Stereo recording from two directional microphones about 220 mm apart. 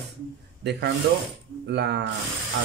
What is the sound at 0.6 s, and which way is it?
Speech, 50° right (ahead or behind).